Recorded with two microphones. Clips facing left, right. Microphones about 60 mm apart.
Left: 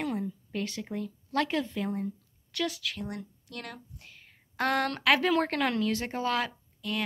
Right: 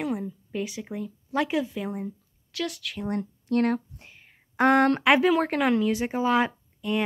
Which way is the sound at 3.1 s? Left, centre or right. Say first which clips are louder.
Right 12 dB; right.